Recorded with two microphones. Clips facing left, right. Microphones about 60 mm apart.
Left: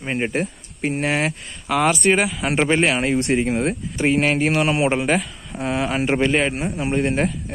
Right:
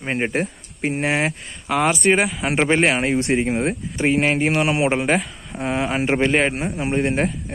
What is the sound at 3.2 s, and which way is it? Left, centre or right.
Speech, centre.